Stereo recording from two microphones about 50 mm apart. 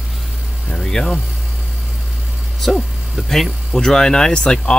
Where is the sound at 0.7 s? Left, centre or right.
Centre.